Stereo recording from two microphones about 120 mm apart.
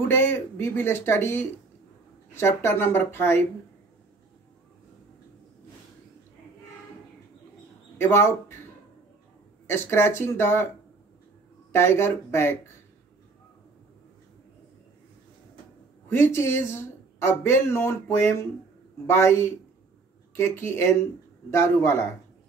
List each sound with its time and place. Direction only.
0.1 s speech: 20° left (ahead or behind)
8.0 s speech: 20° left (ahead or behind)
9.7 s speech: 20° left (ahead or behind)
11.7 s speech: 20° left (ahead or behind)
16.1 s speech: 20° left (ahead or behind)